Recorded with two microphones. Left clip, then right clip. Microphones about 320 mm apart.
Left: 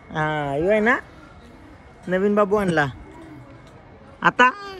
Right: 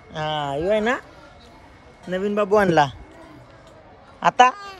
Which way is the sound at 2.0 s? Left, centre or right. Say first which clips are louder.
Left 3 dB; centre.